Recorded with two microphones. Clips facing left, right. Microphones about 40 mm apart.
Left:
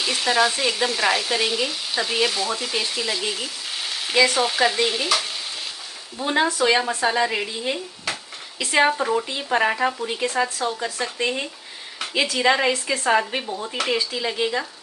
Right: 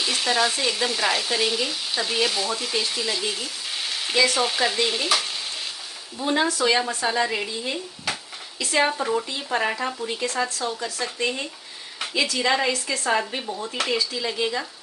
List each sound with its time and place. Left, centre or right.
0.0 s speech: centre
6.1 s speech: left
13.8 s speech: centre
14.1 s speech: left